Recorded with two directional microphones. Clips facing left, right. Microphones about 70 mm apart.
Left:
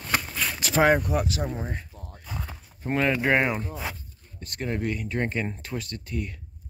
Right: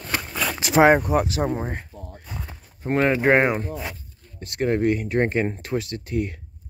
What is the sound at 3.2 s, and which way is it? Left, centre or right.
Speech, right.